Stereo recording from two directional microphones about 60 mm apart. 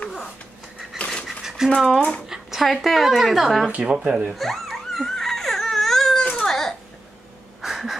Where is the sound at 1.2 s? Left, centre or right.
Centre.